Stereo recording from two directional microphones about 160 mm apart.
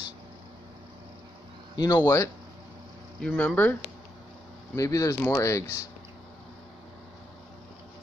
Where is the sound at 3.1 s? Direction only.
10° left (ahead or behind).